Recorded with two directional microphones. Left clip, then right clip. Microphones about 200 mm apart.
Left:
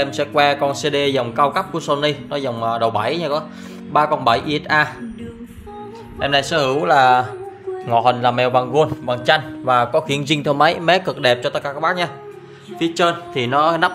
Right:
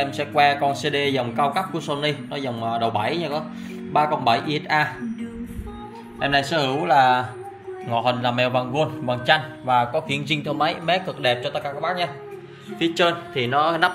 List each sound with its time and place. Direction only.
0.0 s a man's voice: 25° left (ahead or behind)
6.1 s a man's voice: 20° left (ahead or behind); by 12.1 s 40° left (ahead or behind)
12.8 s a man's voice: 25° left (ahead or behind)